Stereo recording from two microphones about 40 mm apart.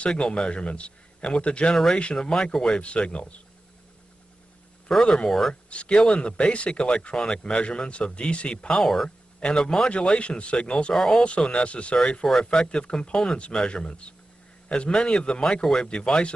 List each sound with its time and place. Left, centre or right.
0.0 s speech: left
2.1 s speech: centre
2.8 s speech: left
4.8 s speech: centre
5.5 s speech: left
8.8 s speech: centre
9.4 s speech: left
11.0 s speech: centre
11.4 s speech: left